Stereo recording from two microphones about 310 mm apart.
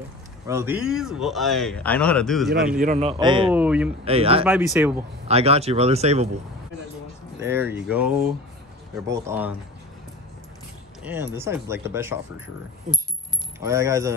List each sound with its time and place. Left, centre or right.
0.5 s speech: centre
2.8 s speech: right
3.5 s speech: centre
4.0 s speech: centre
4.5 s speech: centre
5.3 s speech: centre
7.3 s speech: centre
11.1 s speech: centre
13.7 s speech: centre